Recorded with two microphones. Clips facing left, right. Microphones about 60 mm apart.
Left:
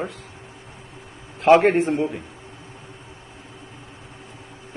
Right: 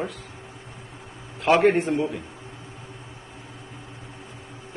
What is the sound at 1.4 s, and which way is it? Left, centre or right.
Speech, centre.